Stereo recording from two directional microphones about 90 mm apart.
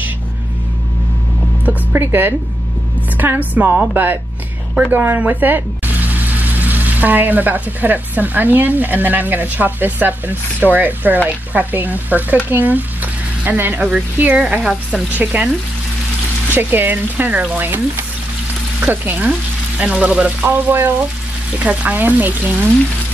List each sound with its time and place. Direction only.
1.7 s speech: 20° right (ahead or behind)